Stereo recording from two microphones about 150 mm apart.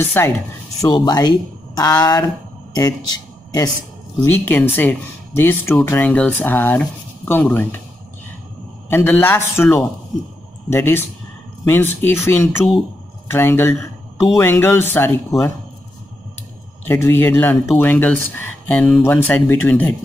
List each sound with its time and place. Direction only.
0.0 s speech: 15° left (ahead or behind)
0.8 s speech: 30° left (ahead or behind)
4.2 s speech: 15° left (ahead or behind)
8.8 s speech: 15° left (ahead or behind)
16.8 s speech: 15° left (ahead or behind)